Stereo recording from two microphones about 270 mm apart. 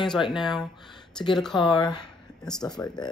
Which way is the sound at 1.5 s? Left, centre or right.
Centre.